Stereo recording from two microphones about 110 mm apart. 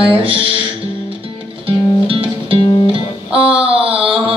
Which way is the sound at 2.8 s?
55° right (ahead or behind).